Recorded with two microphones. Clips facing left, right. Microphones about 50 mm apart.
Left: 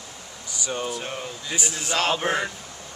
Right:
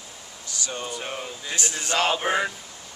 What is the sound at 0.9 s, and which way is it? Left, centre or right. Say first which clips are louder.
Air conditioning: left 1 dB; centre.